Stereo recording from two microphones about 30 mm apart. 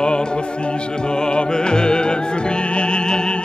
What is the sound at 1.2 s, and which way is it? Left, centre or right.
Music, left.